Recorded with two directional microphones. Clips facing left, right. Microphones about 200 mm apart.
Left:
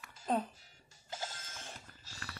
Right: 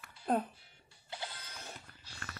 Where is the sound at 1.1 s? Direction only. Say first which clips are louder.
Left 1 dB; 45° left (ahead or behind).